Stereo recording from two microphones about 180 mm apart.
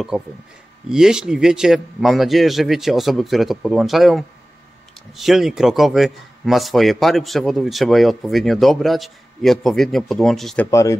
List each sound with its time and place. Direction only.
0.1 s a man's voice: 5° right (ahead or behind)
10.7 s speech: 15° left (ahead or behind)